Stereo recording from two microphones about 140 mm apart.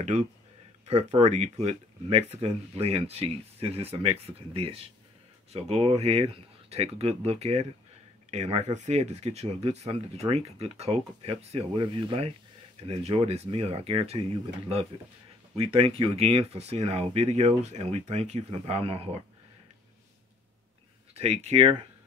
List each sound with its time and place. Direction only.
0.0 s speech: 55° right (ahead or behind)
15.5 s speech: 45° right (ahead or behind)
21.1 s speech: 50° right (ahead or behind)